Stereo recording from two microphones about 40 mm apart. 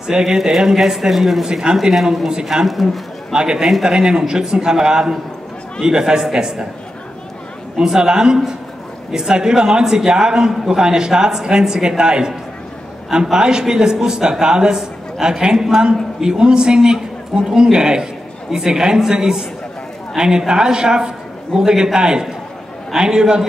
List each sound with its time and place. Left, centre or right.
0.0 s speech: centre
3.3 s speech: centre
7.7 s a man's voice: centre